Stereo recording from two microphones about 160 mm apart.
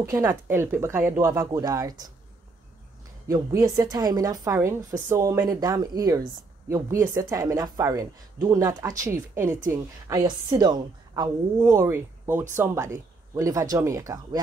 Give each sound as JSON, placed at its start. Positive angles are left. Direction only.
{"t": 0.0, "sound": "speech", "side_deg": -15}
{"t": 3.3, "sound": "a woman's voice", "side_deg": -20}
{"t": 10.2, "sound": "a woman's voice", "side_deg": -30}